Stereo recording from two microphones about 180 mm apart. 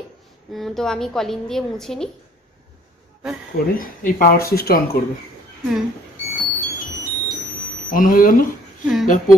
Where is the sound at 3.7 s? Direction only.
50° left (ahead or behind).